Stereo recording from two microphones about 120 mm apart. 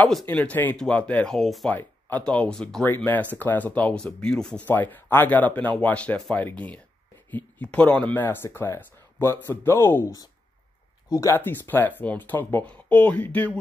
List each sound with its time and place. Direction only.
0.3 s speech: 10° left (ahead or behind)
1.7 s speech: 15° left (ahead or behind)